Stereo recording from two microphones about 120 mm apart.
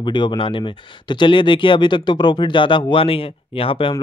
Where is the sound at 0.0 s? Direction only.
40° left (ahead or behind).